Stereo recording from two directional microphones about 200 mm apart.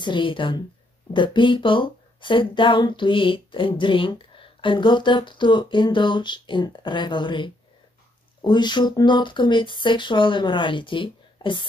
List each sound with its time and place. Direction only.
0.0 s speech: 25° left (ahead or behind)